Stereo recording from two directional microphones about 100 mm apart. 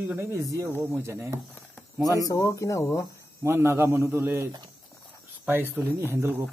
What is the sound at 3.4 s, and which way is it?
Speech, 25° right (ahead or behind).